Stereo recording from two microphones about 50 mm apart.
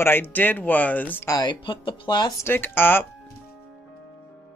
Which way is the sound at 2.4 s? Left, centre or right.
Left.